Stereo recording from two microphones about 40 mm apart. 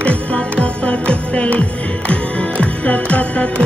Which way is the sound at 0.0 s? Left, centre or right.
Left.